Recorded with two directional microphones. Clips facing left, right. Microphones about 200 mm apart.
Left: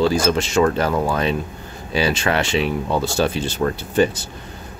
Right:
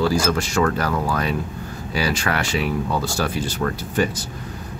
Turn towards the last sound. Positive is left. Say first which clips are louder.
# left 4 dB
turn(degrees=25)  # may be behind; listen again after turning